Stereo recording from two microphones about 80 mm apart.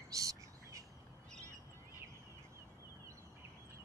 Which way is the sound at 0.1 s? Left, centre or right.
Right.